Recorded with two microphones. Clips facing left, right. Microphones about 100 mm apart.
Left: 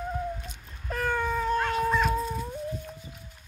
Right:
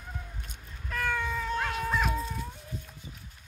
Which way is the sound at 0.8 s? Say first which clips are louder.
Left 3 dB; 35° left (ahead or behind).